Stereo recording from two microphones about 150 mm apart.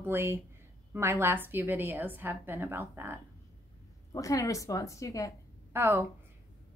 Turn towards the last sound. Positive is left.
turn(degrees=-15)  # may be behind; listen again after turning